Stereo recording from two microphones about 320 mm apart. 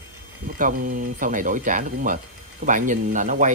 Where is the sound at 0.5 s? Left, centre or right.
Right.